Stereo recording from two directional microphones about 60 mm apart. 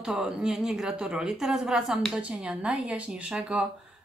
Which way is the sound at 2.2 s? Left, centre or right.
Centre.